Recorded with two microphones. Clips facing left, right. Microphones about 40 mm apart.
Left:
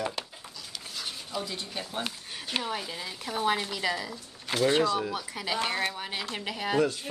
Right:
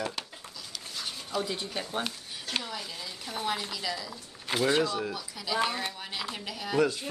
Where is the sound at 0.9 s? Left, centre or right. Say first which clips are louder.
Right 2 dB; centre.